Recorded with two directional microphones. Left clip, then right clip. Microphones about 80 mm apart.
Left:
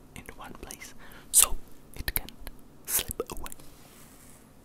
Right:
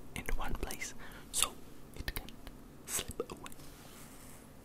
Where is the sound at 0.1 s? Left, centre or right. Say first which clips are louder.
Right 3 dB; centre.